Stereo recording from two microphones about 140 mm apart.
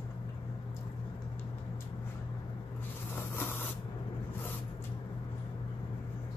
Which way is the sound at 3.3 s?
15° left (ahead or behind).